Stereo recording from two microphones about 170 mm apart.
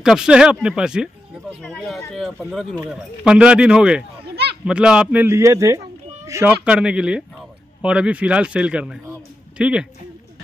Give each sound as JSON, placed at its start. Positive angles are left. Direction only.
{"t": 0.0, "sound": "a man's voice", "side_deg": -5}
{"t": 6.6, "sound": "speech", "side_deg": -5}